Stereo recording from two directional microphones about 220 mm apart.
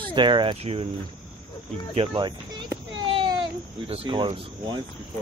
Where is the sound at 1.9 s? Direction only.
20° right (ahead or behind).